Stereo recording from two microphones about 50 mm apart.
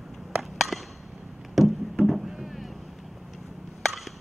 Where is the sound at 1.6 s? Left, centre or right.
Centre.